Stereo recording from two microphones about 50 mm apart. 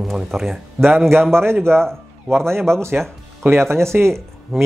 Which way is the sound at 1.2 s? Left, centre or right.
Right.